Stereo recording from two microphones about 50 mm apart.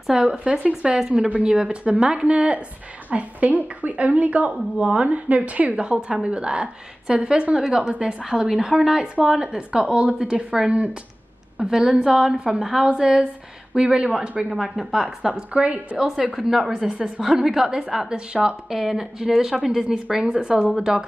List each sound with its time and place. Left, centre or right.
0.1 s speech: centre
1.5 s speech: centre
5.8 s speech: centre
14.5 s speech: centre
16.3 s a woman's voice: centre